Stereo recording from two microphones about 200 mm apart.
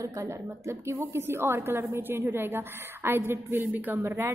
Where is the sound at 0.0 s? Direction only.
15° right (ahead or behind).